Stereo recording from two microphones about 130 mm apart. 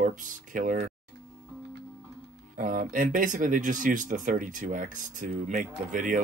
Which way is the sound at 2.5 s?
90° right.